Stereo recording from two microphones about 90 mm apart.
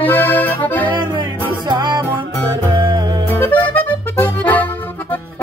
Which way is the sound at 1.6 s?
55° right (ahead or behind).